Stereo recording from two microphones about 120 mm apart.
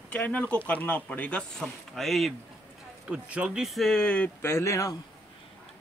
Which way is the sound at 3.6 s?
Centre (ahead or behind).